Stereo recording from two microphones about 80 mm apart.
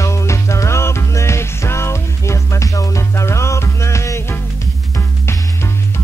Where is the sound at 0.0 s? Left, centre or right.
Left.